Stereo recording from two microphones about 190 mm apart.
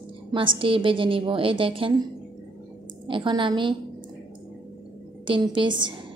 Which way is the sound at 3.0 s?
25° right (ahead or behind).